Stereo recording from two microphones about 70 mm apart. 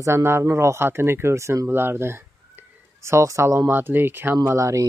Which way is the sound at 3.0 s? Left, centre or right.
Right.